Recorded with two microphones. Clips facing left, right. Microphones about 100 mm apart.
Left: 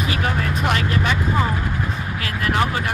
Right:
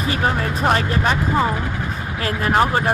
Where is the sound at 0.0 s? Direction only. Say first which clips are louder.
Right 2 dB; 35° right (ahead or behind).